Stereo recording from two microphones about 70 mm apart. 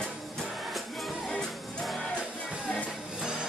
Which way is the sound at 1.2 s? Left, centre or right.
Centre.